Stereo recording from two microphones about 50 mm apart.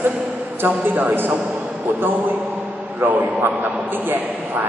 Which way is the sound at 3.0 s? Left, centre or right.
Right.